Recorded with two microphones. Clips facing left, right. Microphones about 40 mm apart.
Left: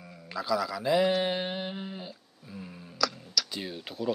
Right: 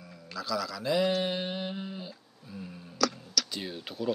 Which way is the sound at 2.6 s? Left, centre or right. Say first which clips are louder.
Right 1 dB; centre.